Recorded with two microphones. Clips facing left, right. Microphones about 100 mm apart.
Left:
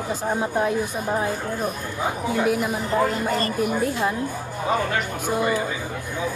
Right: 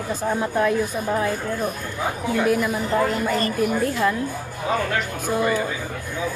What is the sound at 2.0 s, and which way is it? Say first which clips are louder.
Speech: right 1 dB; 10° left (ahead or behind).